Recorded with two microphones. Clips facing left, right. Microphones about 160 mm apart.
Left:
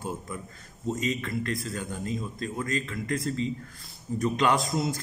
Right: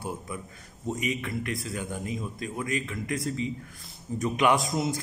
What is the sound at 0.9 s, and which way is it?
A man's voice, 15° right (ahead or behind).